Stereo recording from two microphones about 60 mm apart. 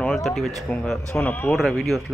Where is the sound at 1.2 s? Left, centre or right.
Left.